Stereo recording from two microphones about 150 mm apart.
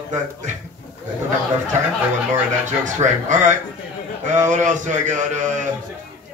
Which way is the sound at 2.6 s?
55° right (ahead or behind).